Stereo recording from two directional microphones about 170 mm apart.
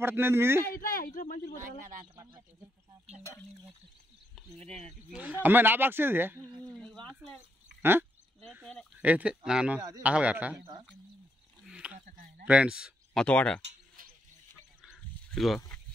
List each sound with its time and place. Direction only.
0.0 s speech: 15° right (ahead or behind)
0.7 s speech: 60° left (ahead or behind)
4.4 s speech: 5° left (ahead or behind)
5.2 s speech: 10° right (ahead or behind)
6.6 s speech: 5° left (ahead or behind)
9.0 s speech: 10° right (ahead or behind)
9.8 s speech: 20° right (ahead or behind)
10.0 s speech: 10° right (ahead or behind)
11.6 s a sound: 5° right (ahead or behind)
12.1 s a sound: 55° right (ahead or behind)
12.4 s speech: 5° right (ahead or behind)
14.0 s a sound: 55° right (ahead or behind)
14.8 s a sound: centre (ahead or behind)